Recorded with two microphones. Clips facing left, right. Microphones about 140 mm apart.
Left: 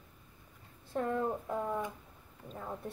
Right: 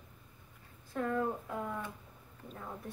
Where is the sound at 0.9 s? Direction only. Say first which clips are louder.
Left 1 dB; 30° left (ahead or behind).